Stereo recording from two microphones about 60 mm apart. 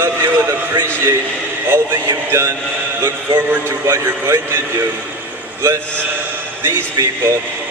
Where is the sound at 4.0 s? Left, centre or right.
Right.